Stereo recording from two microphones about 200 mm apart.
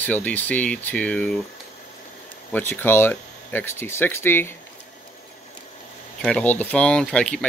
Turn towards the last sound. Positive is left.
turn(degrees=5)  # may be behind; listen again after turning